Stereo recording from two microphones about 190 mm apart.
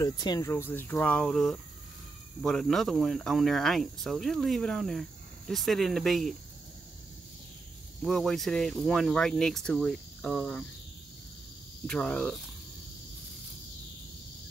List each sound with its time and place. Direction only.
0.0 s speech: 20° left (ahead or behind); by 6.3 s centre (ahead or behind)
8.0 s speech: centre (ahead or behind)
11.8 s speech: 5° left (ahead or behind)